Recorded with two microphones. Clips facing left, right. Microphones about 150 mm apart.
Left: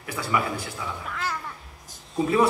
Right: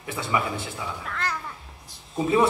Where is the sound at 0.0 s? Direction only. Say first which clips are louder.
Even; 25° right (ahead or behind).